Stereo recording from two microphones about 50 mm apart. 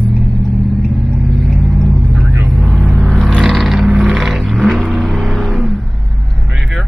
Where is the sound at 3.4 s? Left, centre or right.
Centre.